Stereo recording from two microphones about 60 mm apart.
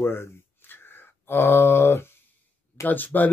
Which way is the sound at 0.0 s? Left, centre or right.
Left.